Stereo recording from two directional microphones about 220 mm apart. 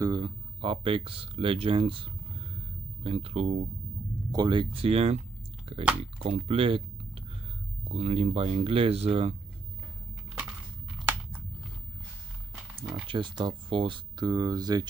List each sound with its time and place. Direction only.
0.0 s speech: 20° right (ahead or behind)
7.9 s speech: 30° right (ahead or behind)
13.1 s speech: 20° right (ahead or behind)